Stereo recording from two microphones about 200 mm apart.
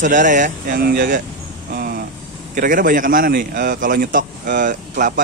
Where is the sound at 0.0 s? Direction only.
40° right (ahead or behind).